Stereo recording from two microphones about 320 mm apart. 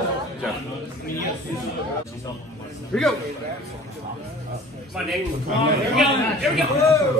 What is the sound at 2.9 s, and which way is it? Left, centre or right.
Speech, centre.